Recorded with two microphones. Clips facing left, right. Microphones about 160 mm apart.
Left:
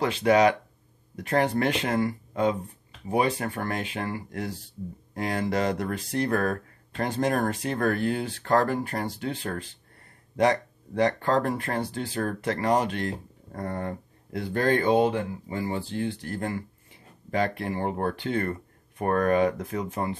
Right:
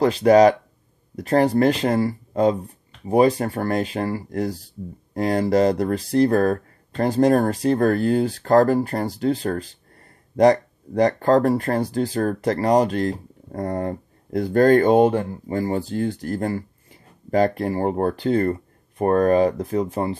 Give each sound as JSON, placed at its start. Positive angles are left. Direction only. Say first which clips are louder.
{"t": 0.0, "sound": "speech", "louder": "right 7 dB", "side_deg": -40}